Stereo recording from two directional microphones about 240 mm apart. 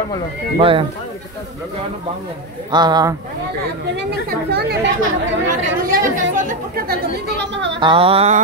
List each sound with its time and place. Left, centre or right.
0.6 s a sound: right
2.7 s speech: centre
3.9 s speech: right
5.5 s speech: right
6.9 s speech: right
7.8 s a sound: right